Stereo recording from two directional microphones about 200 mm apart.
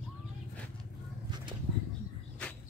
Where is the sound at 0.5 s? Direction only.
5° left (ahead or behind).